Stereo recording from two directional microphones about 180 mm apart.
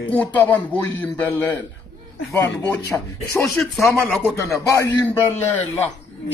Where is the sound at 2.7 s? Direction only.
15° left (ahead or behind).